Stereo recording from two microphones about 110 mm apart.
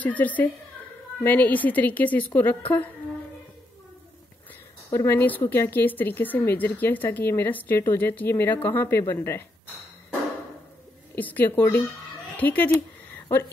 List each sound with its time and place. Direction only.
0.0 s a woman's voice: 15° left (ahead or behind)
4.9 s a woman's voice: 20° left (ahead or behind)
11.1 s a woman's voice: 15° left (ahead or behind)
12.4 s a sound: 15° left (ahead or behind)